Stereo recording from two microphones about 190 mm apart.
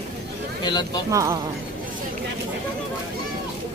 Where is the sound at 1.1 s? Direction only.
15° right (ahead or behind).